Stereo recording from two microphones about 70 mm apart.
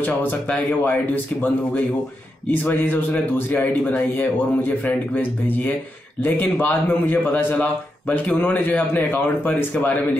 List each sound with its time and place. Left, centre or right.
0.0 s a man's voice: left